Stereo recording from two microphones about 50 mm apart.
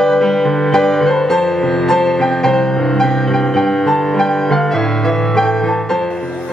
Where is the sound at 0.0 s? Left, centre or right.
Centre.